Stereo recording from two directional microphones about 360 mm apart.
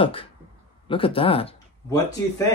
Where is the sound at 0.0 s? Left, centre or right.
Centre.